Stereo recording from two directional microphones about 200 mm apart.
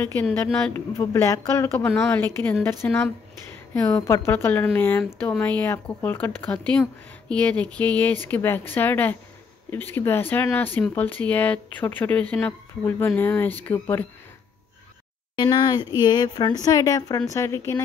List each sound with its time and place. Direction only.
0.0 s speech: 10° left (ahead or behind)
3.7 s speech: 10° left (ahead or behind)
15.3 s speech: 20° left (ahead or behind)